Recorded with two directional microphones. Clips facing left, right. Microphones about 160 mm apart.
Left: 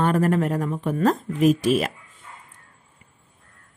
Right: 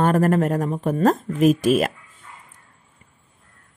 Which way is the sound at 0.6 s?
35° right (ahead or behind).